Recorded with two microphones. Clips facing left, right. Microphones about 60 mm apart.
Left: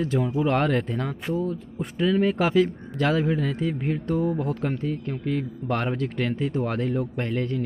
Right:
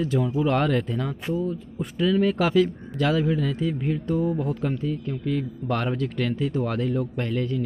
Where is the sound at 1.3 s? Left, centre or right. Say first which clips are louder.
Even; left.